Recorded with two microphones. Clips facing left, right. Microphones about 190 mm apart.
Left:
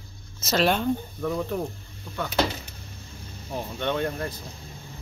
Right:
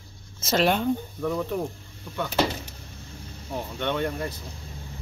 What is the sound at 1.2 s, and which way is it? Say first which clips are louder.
Speech: right 1 dB; centre (ahead or behind).